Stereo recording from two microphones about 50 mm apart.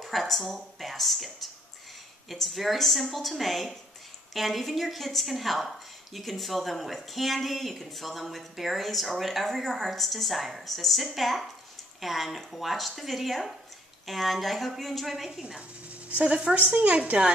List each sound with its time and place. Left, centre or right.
0.0 s speech: centre
16.2 s a woman's voice: right